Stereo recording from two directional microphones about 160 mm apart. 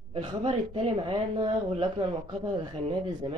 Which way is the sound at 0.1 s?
30° right (ahead or behind).